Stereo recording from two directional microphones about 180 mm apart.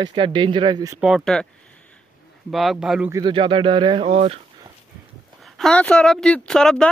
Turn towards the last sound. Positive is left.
turn(degrees=5)  # may be behind; listen again after turning